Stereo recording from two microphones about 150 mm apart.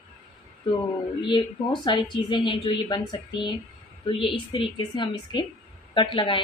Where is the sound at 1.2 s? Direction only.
30° left (ahead or behind).